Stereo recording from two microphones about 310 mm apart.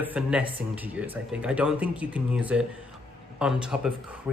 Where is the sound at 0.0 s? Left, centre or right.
Centre.